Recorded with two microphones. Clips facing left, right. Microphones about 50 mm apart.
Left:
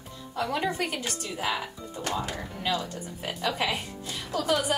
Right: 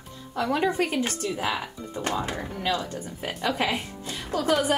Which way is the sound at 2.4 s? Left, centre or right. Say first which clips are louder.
Right 3 dB; right.